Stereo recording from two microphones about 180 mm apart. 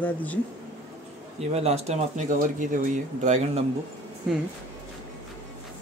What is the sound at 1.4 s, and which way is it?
Speech, 35° right (ahead or behind).